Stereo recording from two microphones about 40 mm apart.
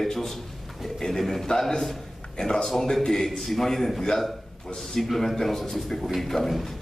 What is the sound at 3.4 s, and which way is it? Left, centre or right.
A man's voice, centre.